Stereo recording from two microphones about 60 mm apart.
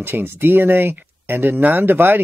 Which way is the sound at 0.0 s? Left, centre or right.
Right.